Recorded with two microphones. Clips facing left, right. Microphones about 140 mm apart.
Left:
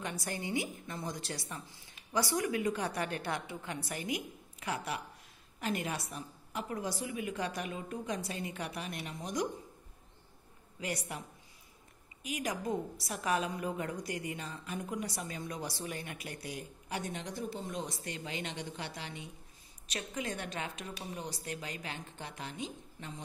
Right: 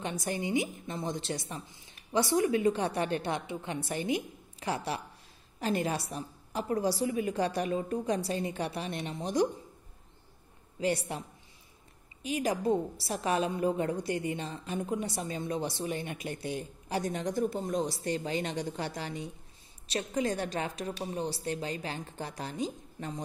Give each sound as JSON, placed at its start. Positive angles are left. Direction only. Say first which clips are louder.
{"t": 0.0, "sound": "a woman's voice", "louder": "right 5 dB", "side_deg": -20}
{"t": 10.8, "sound": "a woman's voice", "louder": "right 8 dB", "side_deg": -30}
{"t": 17.0, "sound": "a woman's voice", "louder": "right 11 dB", "side_deg": -45}